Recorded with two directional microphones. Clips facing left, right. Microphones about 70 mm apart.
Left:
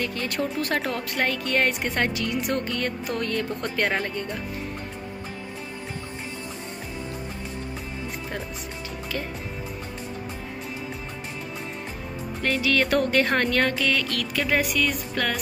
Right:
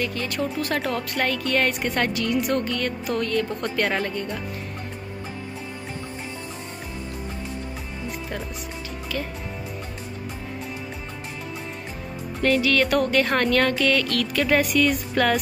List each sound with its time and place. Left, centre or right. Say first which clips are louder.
0.0 s speech: right 1 dB; left
3.6 s speech: right 1 dB; left
12.4 s speech: right 3 dB; left; by 14.9 s centre
15.2 s music: right 6 dB; centre